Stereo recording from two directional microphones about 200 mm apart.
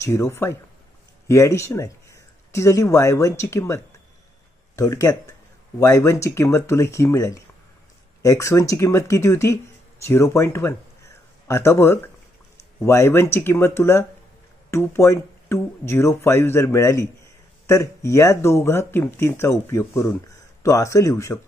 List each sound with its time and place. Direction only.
0.0 s speech: 15° left (ahead or behind)